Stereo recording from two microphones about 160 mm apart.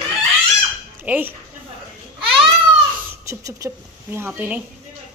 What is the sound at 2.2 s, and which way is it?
Baby cry, 35° right (ahead or behind).